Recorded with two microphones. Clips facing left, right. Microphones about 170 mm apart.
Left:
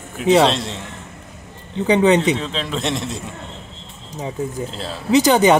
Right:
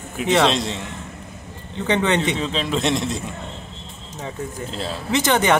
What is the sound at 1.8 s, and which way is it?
Speech, 20° left (ahead or behind).